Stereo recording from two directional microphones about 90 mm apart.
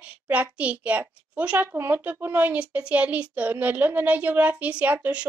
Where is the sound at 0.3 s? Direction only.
15° right (ahead or behind).